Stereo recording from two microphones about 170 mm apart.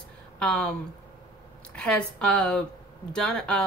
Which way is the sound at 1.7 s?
5° left (ahead or behind).